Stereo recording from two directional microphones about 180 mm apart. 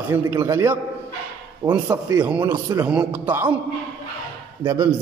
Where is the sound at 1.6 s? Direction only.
30° right (ahead or behind); by 3.6 s 10° right (ahead or behind).